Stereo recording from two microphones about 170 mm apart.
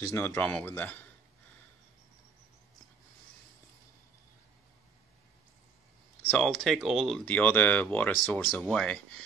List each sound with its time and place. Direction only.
0.0 s speech: 15° left (ahead or behind)
6.2 s speech: 5° left (ahead or behind)